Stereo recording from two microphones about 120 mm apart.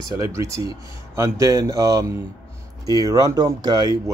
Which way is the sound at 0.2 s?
25° right (ahead or behind).